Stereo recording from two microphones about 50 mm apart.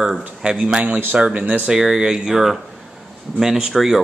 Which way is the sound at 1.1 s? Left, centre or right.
Right.